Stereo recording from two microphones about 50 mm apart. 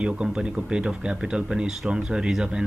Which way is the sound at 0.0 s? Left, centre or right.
Centre.